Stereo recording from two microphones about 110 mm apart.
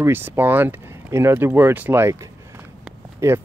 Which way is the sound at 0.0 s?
20° right (ahead or behind).